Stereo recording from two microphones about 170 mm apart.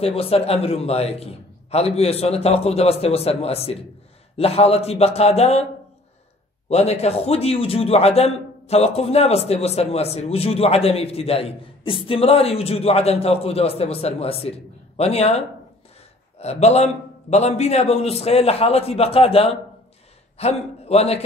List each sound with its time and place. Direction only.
0.0 s a man's voice: 35° left (ahead or behind)
6.7 s a man's voice: 40° left (ahead or behind)